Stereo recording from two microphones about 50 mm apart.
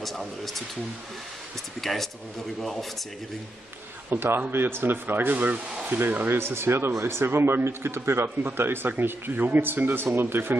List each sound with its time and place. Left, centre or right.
0.0 s speech: centre
1.8 s speech: centre
4.1 s speech: right
6.3 s speech: right
6.9 s speech: right